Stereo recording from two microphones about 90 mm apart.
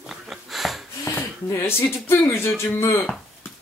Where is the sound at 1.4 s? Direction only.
30° left (ahead or behind).